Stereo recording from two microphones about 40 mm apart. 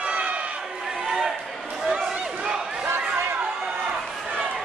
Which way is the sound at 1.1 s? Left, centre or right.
Centre.